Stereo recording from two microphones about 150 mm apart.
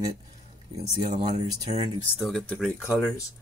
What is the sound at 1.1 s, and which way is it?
Speech, 40° right (ahead or behind).